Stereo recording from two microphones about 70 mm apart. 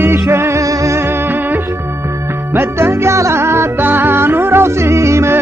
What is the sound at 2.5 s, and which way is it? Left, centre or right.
Music, right.